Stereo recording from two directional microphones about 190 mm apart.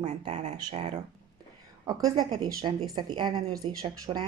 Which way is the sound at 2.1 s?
20° right (ahead or behind).